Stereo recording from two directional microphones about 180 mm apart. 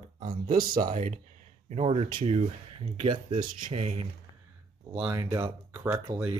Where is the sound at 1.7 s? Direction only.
35° right (ahead or behind).